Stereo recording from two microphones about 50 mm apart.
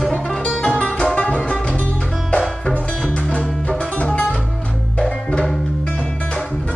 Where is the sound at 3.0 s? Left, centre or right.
Left.